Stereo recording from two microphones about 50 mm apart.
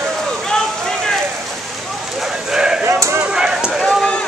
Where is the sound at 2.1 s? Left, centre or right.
Centre.